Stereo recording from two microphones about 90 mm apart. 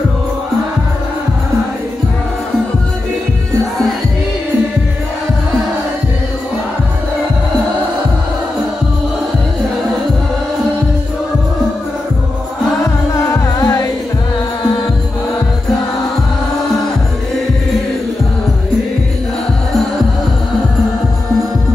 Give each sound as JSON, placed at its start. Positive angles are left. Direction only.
{"t": 12.8, "sound": "music", "side_deg": 40}